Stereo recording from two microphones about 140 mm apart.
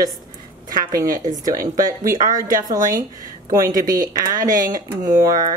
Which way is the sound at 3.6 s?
25° right (ahead or behind).